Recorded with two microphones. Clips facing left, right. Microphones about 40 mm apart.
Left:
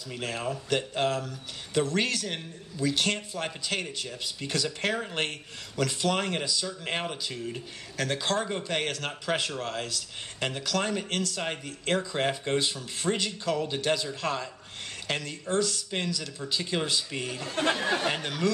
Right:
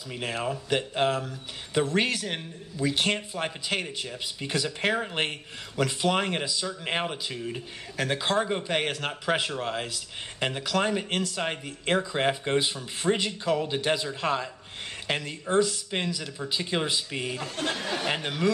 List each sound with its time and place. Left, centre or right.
0.1 s speech: centre